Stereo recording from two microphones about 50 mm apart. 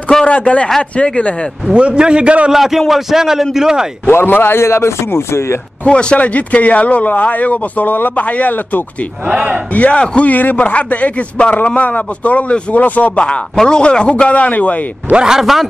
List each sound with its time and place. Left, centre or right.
0.3 s a man's voice: left
1.7 s a man's voice: centre
2.5 s a man's voice: centre
4.1 s a man's voice: left
4.6 s speech: left
5.9 s speech: centre
9.3 s a man's voice: centre
9.8 s speech: left
13.6 s speech: centre
15.1 s a man's voice: centre
15.4 s a man's voice: centre